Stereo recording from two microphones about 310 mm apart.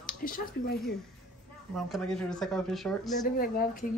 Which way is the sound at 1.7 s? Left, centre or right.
Centre.